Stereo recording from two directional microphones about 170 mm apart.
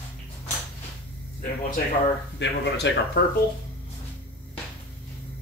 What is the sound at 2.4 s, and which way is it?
Speech, 90° left.